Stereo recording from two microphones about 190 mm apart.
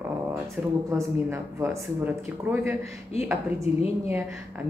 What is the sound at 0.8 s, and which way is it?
Speech, 15° right (ahead or behind).